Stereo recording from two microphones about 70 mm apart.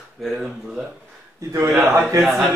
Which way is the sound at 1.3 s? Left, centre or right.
Right.